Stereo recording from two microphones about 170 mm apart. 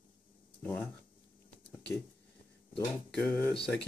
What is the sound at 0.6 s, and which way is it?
Speech, 10° left (ahead or behind).